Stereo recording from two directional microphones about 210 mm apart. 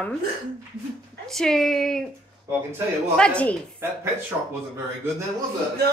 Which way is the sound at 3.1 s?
5° left (ahead or behind).